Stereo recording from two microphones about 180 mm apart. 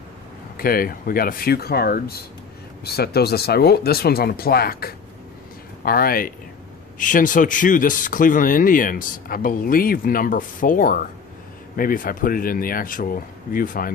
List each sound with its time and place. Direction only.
0.6 s speech: 50° left (ahead or behind)